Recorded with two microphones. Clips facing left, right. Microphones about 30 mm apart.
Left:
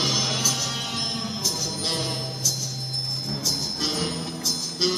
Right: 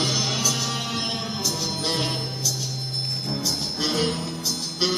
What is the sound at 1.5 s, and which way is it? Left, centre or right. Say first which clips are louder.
Music: right 2 dB; right.